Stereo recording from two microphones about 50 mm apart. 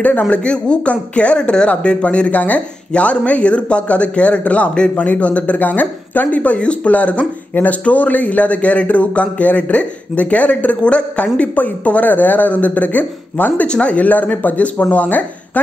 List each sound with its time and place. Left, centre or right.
0.2 s speech: left
13.7 s speech: left